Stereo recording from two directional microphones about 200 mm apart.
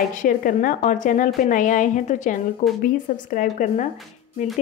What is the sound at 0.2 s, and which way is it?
A woman's voice, 45° left (ahead or behind).